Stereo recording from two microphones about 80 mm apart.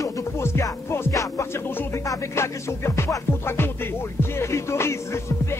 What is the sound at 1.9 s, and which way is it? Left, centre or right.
Music, left.